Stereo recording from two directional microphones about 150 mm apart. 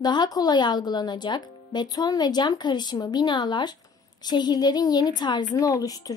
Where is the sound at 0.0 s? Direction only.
30° left (ahead or behind).